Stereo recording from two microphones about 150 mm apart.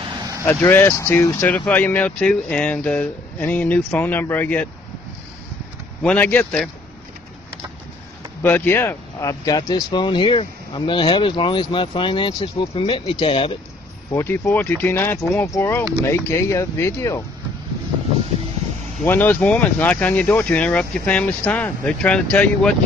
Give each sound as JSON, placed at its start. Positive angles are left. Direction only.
{"t": 0.6, "sound": "speech", "side_deg": 15}
{"t": 6.0, "sound": "speech", "side_deg": 10}
{"t": 8.4, "sound": "speech", "side_deg": 15}
{"t": 14.1, "sound": "speech", "side_deg": 15}
{"t": 19.0, "sound": "speech", "side_deg": 10}